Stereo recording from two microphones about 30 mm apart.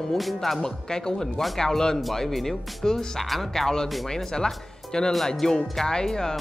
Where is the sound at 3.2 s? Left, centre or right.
Centre.